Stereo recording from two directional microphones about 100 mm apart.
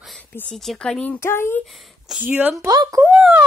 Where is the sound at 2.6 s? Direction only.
45° right (ahead or behind).